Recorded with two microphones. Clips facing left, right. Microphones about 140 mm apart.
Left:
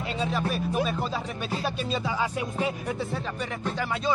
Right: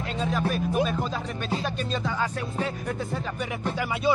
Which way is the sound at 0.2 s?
Centre (ahead or behind).